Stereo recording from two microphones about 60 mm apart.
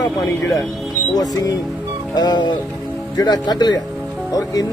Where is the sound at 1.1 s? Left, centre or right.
Left.